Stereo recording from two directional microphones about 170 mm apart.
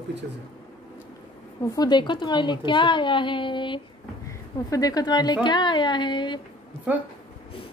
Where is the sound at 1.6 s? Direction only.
20° left (ahead or behind).